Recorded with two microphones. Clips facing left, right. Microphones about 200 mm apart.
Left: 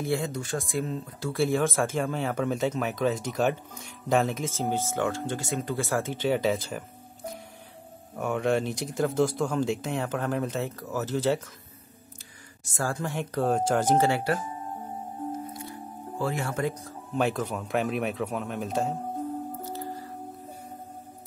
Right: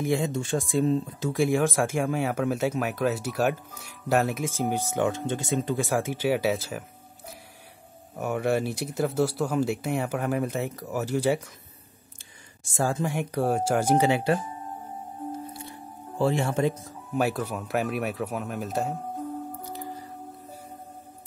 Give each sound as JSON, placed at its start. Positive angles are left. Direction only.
{"t": 0.0, "sound": "speech", "side_deg": -15}
{"t": 8.2, "sound": "speech", "side_deg": -5}
{"t": 12.6, "sound": "speech", "side_deg": -20}
{"t": 16.2, "sound": "speech", "side_deg": -25}
{"t": 17.1, "sound": "speech", "side_deg": -5}
{"t": 19.6, "sound": "music", "side_deg": -15}